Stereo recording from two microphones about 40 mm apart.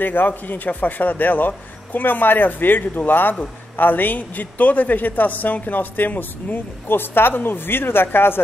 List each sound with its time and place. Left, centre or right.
0.0 s a man's voice: left